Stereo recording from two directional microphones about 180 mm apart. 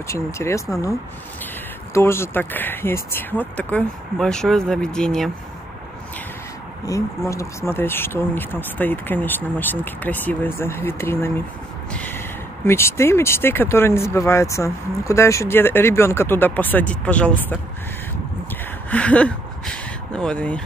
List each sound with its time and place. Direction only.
0.1 s speech: 15° left (ahead or behind)
2.0 s speech: 15° left (ahead or behind)
6.9 s speech: 15° left (ahead or behind)
11.9 s a sound: 10° left (ahead or behind)
12.6 s speech: 15° left (ahead or behind)
18.9 s a sound: 5° left (ahead or behind)